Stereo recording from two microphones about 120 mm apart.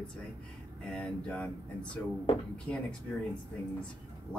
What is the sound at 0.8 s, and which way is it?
Speech, 5° left (ahead or behind).